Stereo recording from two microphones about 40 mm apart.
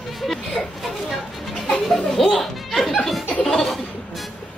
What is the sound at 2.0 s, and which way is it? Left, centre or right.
Children playing, centre.